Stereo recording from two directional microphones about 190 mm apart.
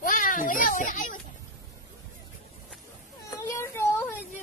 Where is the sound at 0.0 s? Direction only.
45° left (ahead or behind).